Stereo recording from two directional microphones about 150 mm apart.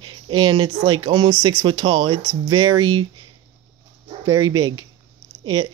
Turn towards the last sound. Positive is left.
turn(degrees=-25)  # may be behind; listen again after turning